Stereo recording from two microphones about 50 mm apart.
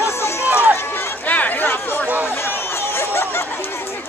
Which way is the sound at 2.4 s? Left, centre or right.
Left.